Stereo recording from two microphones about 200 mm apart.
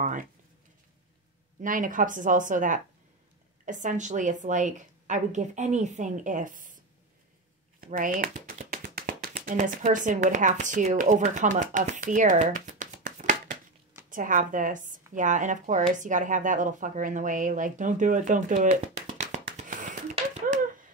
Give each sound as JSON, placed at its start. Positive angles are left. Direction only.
{"t": 1.6, "sound": "a woman's voice", "side_deg": -40}
{"t": 7.8, "sound": "a woman's voice", "side_deg": -45}
{"t": 19.1, "sound": "tap", "side_deg": -35}